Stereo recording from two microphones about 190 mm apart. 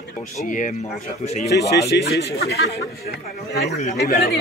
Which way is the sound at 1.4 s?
60° left (ahead or behind).